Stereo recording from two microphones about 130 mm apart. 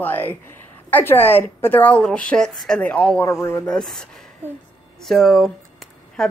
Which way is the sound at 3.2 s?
20° left (ahead or behind).